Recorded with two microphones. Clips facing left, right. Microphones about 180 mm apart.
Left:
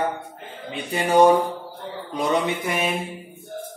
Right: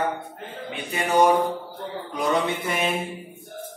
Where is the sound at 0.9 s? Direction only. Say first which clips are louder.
Left 3 dB; 30° left (ahead or behind).